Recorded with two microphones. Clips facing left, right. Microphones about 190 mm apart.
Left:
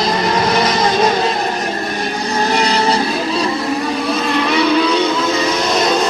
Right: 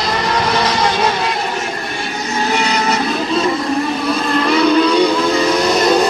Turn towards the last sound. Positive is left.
turn(degrees=5)  # may be behind; listen again after turning